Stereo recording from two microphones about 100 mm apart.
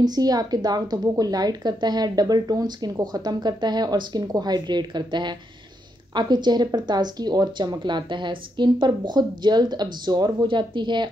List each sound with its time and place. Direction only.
0.0 s a woman's voice: 40° right (ahead or behind)